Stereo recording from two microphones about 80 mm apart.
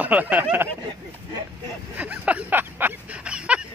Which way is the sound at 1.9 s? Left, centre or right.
Centre.